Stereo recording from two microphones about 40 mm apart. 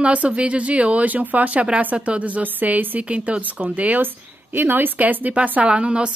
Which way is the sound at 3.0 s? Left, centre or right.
Right.